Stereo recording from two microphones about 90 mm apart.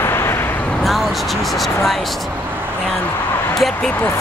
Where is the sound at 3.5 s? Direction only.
5° left (ahead or behind).